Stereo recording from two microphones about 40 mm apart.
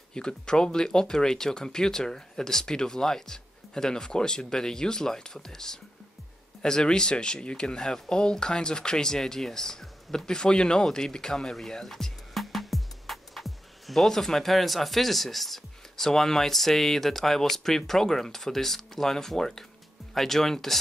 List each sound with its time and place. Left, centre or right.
0.1 s speech: left